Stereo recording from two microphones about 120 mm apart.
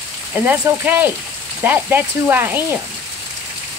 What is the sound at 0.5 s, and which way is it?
Speech, 15° right (ahead or behind).